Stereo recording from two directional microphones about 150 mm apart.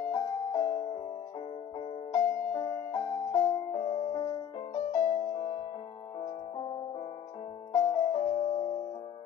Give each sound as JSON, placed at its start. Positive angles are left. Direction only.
{"t": 0.1, "sound": "music", "side_deg": 30}
{"t": 2.1, "sound": "music", "side_deg": 30}
{"t": 7.7, "sound": "music", "side_deg": 25}